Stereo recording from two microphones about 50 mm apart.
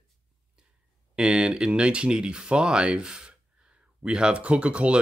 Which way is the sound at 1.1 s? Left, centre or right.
Centre.